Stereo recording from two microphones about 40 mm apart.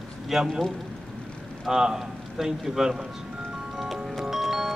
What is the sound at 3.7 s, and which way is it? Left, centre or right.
Music, centre.